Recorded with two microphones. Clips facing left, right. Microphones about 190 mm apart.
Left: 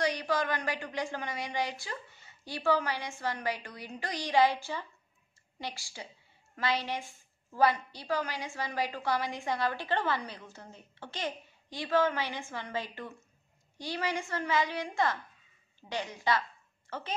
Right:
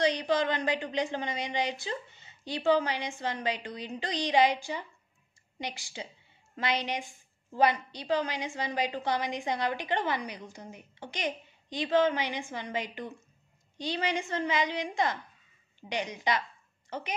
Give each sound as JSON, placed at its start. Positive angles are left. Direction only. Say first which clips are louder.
{"t": 0.0, "sound": "a woman's voice", "louder": "right 4 dB", "side_deg": -20}